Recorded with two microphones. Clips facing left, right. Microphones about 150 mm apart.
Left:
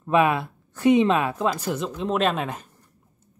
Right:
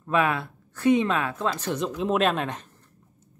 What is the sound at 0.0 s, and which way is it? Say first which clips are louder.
Speech: left 4 dB; 20° left (ahead or behind).